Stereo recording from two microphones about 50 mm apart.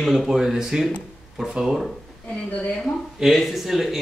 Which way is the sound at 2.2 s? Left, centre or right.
Left.